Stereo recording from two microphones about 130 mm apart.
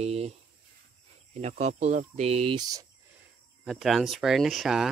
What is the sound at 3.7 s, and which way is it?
Speech, centre (ahead or behind).